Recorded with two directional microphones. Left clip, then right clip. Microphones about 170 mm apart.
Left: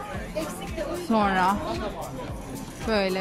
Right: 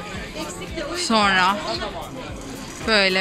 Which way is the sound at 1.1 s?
15° left (ahead or behind).